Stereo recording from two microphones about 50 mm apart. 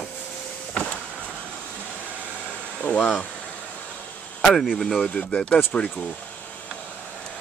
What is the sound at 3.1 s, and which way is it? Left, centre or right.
Speech, left.